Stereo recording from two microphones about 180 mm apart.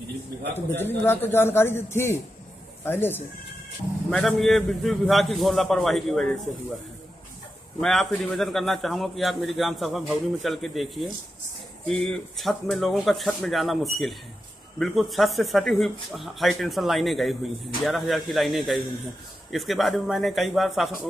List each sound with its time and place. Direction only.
0.6 s speech: 10° left (ahead or behind)
7.8 s speech: centre (ahead or behind)